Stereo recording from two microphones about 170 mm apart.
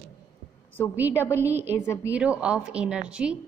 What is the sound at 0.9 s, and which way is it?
A woman's voice, 10° right (ahead or behind).